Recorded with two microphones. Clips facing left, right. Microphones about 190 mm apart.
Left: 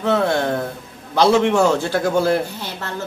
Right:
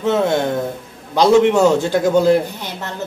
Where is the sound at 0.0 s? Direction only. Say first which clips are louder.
Right 2 dB; 20° right (ahead or behind).